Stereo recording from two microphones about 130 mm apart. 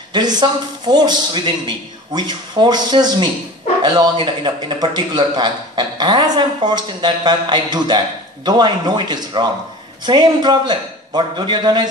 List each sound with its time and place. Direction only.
0.1 s a man's voice: 35° right (ahead or behind)